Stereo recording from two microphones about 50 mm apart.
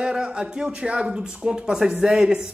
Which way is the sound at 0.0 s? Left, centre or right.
Centre.